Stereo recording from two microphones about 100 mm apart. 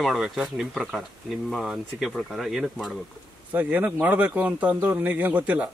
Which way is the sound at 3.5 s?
15° right (ahead or behind).